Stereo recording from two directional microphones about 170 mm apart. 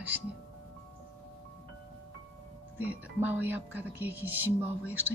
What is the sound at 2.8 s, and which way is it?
Speech, 10° right (ahead or behind).